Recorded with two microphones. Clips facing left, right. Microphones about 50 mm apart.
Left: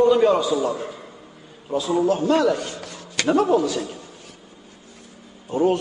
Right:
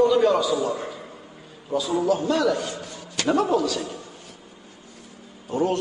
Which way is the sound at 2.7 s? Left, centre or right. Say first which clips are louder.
Even; left.